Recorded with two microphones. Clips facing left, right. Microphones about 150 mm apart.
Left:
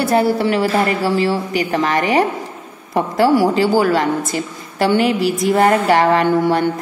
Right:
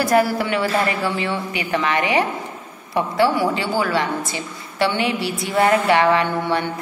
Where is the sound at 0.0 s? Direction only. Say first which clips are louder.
Left 3 dB; 30° left (ahead or behind).